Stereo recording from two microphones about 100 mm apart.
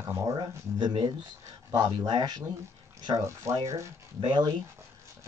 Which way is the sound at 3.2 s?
30° right (ahead or behind).